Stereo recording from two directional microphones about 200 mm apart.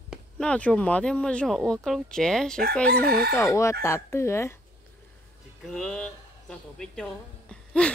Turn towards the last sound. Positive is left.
turn(degrees=5)  # may be behind; listen again after turning